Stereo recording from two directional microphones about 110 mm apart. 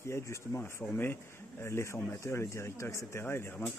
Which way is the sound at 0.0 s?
25° left (ahead or behind).